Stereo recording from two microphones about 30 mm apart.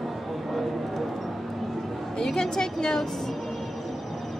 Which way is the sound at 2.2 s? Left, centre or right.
Left.